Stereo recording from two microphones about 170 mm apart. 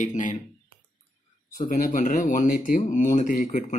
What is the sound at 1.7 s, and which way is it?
Speech, 50° left (ahead or behind).